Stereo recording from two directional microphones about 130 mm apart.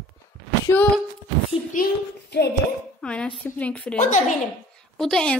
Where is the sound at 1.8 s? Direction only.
90° left.